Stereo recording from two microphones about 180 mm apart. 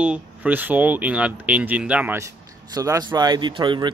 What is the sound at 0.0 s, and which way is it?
Speech, 5° right (ahead or behind).